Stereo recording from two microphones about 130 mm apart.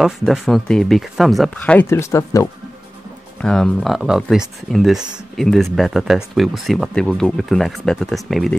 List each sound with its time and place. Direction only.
0.0 s speech: centre (ahead or behind)
1.8 s speech: 20° left (ahead or behind)
3.3 s speech: 5° left (ahead or behind)